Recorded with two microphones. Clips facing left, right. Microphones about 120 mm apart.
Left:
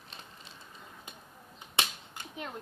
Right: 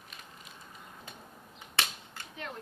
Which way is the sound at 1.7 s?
20° left (ahead or behind).